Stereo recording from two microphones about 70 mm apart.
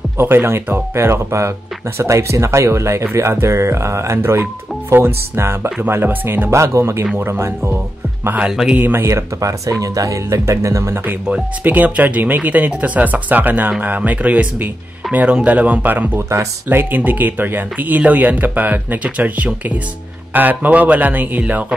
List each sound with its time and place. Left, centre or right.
0.2 s speech: right
0.9 s speech: right
6.5 s speech: right
8.5 s a man's voice: centre
8.7 s speech: right
9.0 s speech: right
11.6 s speech: right
16.2 s speech: right
16.6 s speech: right